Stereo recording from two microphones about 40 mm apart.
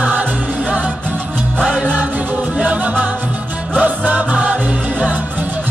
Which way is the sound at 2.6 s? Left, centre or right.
Right.